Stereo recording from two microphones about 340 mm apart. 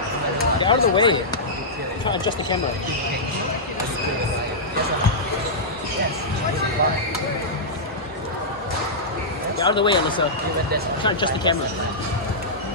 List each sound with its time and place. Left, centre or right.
0.6 s speech: centre
9.6 s speech: centre